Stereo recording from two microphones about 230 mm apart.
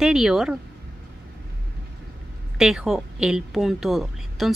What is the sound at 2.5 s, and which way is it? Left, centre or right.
A woman's voice, centre.